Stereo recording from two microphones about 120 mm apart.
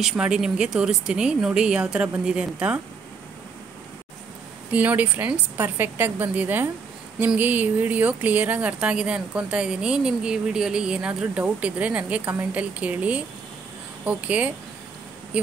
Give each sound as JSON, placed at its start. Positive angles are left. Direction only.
{"t": 0.0, "sound": "speech", "side_deg": -5}
{"t": 4.7, "sound": "speech", "side_deg": -15}